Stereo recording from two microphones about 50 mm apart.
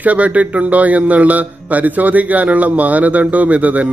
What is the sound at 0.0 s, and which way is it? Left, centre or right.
A man's voice, right.